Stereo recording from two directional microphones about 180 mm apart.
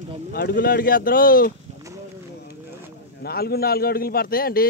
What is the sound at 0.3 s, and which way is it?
Speech, 60° left (ahead or behind).